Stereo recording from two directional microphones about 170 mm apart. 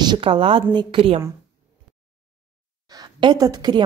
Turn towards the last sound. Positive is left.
turn(degrees=-25)  # may be behind; listen again after turning